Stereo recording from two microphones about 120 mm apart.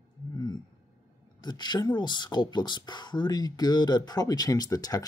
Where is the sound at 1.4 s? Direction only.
35° left (ahead or behind).